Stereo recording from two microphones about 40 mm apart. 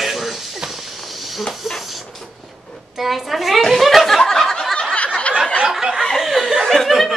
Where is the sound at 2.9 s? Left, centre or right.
Centre.